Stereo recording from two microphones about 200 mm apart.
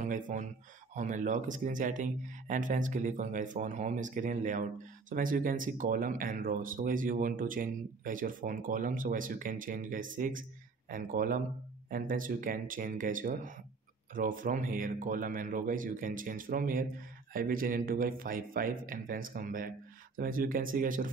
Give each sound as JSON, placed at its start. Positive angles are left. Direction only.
{"t": 0.0, "sound": "speech", "side_deg": -40}